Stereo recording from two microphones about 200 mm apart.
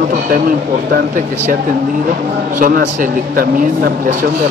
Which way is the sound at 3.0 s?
45° right (ahead or behind).